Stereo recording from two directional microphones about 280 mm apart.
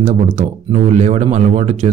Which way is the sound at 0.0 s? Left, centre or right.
Right.